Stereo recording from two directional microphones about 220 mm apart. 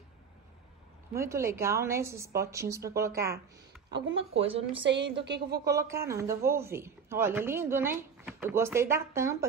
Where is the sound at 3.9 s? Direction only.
60° right (ahead or behind).